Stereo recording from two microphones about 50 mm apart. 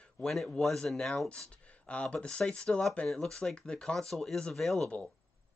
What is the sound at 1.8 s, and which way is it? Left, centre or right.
Speech, left.